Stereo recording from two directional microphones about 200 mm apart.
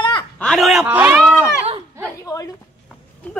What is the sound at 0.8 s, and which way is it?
Speech, 10° right (ahead or behind).